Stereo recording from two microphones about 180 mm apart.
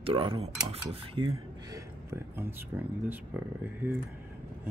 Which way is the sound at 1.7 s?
15° right (ahead or behind).